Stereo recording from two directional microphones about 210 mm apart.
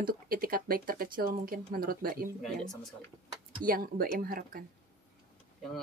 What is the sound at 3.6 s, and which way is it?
Speech, 45° right (ahead or behind).